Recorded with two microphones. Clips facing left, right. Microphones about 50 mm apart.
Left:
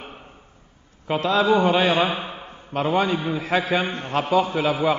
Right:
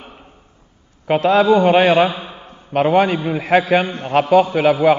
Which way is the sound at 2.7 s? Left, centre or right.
Right.